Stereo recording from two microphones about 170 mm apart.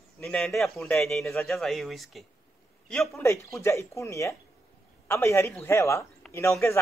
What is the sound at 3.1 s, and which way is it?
Speech, 15° left (ahead or behind).